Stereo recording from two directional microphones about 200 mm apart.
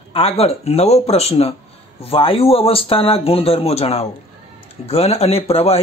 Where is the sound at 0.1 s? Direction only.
30° left (ahead or behind).